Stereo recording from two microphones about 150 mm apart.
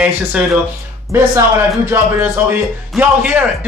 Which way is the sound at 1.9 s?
15° right (ahead or behind).